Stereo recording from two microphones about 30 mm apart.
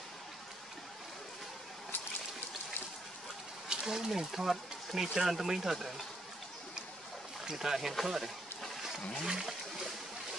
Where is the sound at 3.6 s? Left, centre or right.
Centre.